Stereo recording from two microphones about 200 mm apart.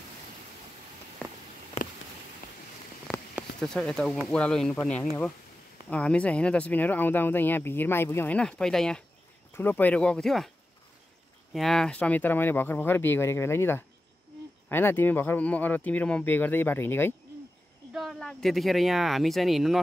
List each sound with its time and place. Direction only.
1.8 s insect: 35° left (ahead or behind)
3.3 s speech: 5° left (ahead or behind)
11.5 s speech: centre (ahead or behind)
17.9 s speech: centre (ahead or behind)